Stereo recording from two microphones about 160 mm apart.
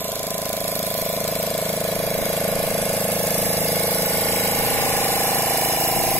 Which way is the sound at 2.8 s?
10° left (ahead or behind).